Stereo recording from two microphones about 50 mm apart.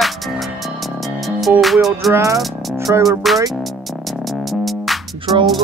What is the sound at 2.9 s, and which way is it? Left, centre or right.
Music, right.